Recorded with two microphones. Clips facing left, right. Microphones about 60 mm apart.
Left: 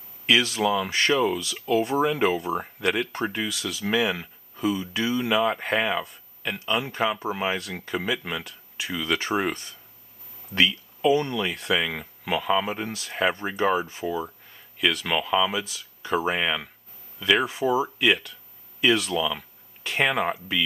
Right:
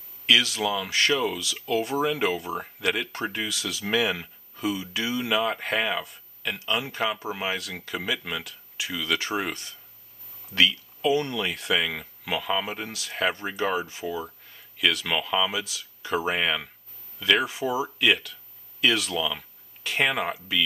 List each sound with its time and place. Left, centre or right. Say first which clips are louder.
0.3 s speech: left 2 dB; centre
11.3 s speech: left 1 dB; centre
17.9 s speech: left 1 dB; centre